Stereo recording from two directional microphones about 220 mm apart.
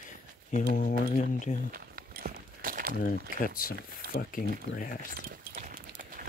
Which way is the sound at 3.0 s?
40° left (ahead or behind).